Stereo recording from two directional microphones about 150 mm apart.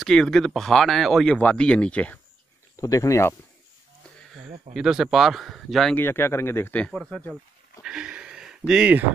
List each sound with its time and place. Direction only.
0.0 s speech: 5° left (ahead or behind)
2.7 s speech: 20° left (ahead or behind)
4.2 s a sound: centre (ahead or behind)
4.7 s speech: 5° right (ahead or behind)
5.9 s speech: 15° left (ahead or behind)
7.8 s a sound: 5° right (ahead or behind)